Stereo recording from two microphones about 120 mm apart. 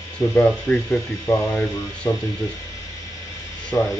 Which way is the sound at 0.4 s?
10° left (ahead or behind).